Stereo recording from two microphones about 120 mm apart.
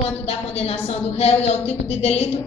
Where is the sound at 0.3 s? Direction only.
60° left (ahead or behind).